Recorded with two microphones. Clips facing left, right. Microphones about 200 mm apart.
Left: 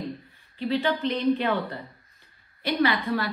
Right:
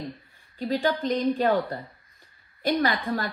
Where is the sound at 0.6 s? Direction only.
45° right (ahead or behind).